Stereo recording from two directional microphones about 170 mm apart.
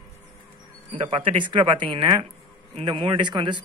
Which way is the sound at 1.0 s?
30° right (ahead or behind).